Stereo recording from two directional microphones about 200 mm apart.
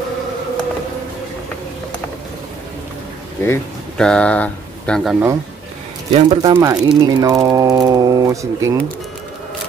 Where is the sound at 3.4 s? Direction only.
10° left (ahead or behind).